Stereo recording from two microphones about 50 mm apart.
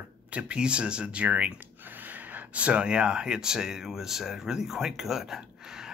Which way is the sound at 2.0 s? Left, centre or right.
Right.